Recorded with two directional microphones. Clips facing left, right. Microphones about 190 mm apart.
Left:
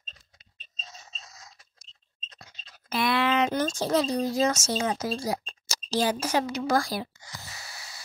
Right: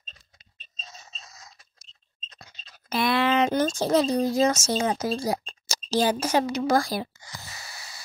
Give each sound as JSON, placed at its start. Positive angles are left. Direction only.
{"t": 2.9, "sound": "speech", "side_deg": -35}
{"t": 3.6, "sound": "speech", "side_deg": -25}